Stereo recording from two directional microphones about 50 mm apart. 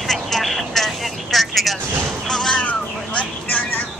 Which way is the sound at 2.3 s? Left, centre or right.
Centre.